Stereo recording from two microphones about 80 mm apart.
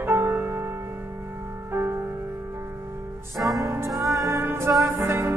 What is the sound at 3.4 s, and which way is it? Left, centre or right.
Music, centre.